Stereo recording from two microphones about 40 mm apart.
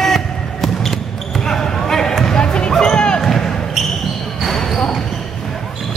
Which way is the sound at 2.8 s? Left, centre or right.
Left.